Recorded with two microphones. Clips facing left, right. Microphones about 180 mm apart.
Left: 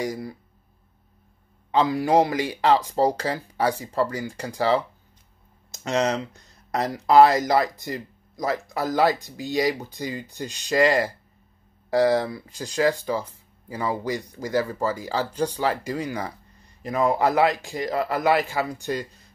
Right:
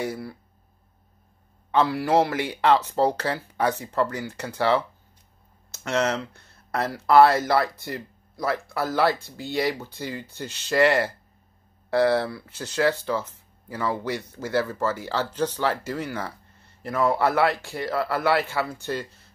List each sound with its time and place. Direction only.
0.0 s speech: 15° left (ahead or behind)
1.8 s speech: 15° left (ahead or behind)